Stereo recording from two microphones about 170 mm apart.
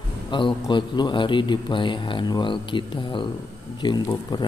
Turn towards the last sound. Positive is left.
turn(degrees=25)  # may be behind; listen again after turning